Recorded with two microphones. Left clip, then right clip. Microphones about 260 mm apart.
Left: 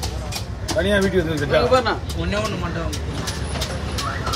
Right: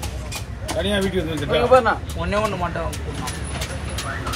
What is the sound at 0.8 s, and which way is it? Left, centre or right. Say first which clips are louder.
Speech: left 3 dB; centre.